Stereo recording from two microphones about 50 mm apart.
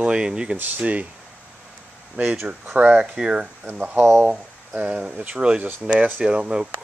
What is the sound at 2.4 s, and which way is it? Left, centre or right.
Speech, right.